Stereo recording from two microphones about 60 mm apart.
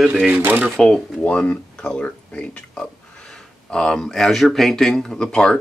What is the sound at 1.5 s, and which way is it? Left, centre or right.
Speech, centre.